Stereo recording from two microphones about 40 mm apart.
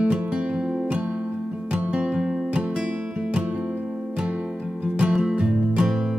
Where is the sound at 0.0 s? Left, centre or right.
Right.